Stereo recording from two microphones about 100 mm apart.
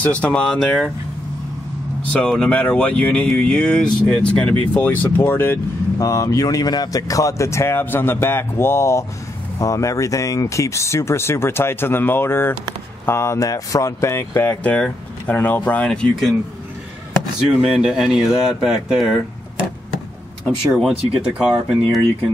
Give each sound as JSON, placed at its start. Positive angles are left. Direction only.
{"t": 0.0, "sound": "speech", "side_deg": 10}
{"t": 2.1, "sound": "speech", "side_deg": 10}
{"t": 4.7, "sound": "speech", "side_deg": 20}
{"t": 5.9, "sound": "speech", "side_deg": 35}
{"t": 17.6, "sound": "speech", "side_deg": -5}
{"t": 21.1, "sound": "speech", "side_deg": -10}